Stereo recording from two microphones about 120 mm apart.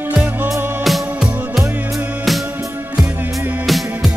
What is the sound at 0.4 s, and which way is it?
Music, 20° right (ahead or behind).